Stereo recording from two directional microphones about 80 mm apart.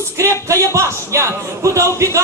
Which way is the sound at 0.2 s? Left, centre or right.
Right.